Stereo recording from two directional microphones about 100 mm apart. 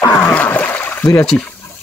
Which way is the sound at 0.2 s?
15° left (ahead or behind).